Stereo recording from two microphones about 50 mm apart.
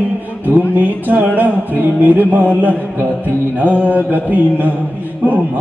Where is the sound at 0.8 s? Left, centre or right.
Right.